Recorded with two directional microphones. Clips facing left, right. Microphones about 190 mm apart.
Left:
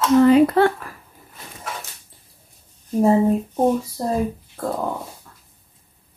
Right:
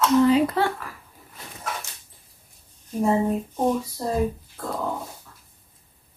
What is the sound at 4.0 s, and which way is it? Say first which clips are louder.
Speech: left 6 dB; 50° left (ahead or behind).